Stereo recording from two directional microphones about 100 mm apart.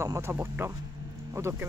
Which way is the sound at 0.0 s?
25° right (ahead or behind).